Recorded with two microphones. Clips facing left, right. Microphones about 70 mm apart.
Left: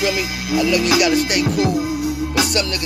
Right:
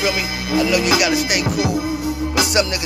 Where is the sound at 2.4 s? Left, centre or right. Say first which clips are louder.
Right 4 dB; centre.